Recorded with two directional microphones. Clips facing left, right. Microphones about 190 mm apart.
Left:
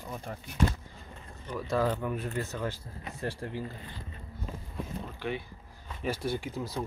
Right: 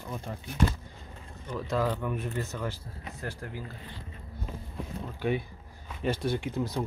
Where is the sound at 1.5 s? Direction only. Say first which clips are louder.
Even; 10° left (ahead or behind).